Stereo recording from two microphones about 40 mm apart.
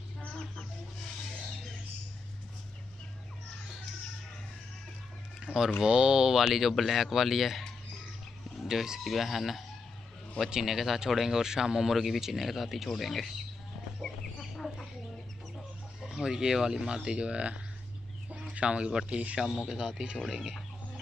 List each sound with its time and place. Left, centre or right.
0.4 s chicken: left
5.4 s a sound: right
5.9 s speech: right
6.4 s speech: centre
8.6 s speech: centre
9.0 s speech: centre
14.4 s chicken: centre
15.5 s chicken: centre
16.3 s speech: centre; by 19.3 s right
19.4 s speech: centre